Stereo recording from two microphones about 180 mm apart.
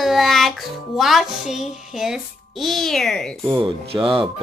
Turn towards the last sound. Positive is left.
turn(degrees=-30)  # may be behind; listen again after turning